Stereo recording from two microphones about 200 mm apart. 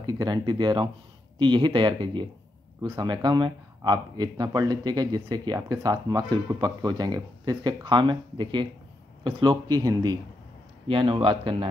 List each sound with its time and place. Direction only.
0.0 s speech: 20° right (ahead or behind)